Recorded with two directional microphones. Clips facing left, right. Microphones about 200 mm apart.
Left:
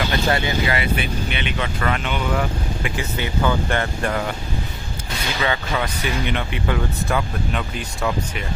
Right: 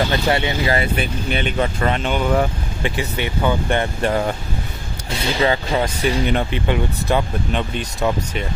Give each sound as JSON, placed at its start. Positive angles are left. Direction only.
{"t": 0.0, "sound": "speech", "side_deg": -25}
{"t": 1.8, "sound": "speech", "side_deg": -30}
{"t": 3.2, "sound": "speech", "side_deg": -20}